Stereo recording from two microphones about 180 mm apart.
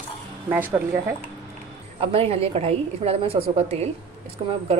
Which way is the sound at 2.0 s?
30° right (ahead or behind).